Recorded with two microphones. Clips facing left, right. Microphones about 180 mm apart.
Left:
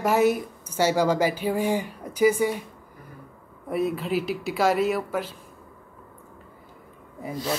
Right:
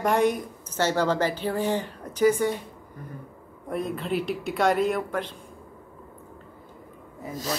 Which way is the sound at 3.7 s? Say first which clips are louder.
Left 3 dB; 5° left (ahead or behind).